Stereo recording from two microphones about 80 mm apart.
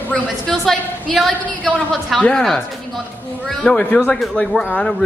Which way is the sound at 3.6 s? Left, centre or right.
Centre.